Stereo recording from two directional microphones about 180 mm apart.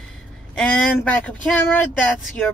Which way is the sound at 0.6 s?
5° left (ahead or behind).